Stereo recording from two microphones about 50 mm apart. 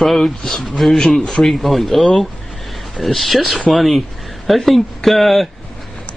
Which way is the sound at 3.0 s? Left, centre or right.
Centre.